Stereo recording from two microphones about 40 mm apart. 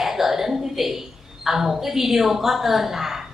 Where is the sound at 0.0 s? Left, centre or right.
Centre.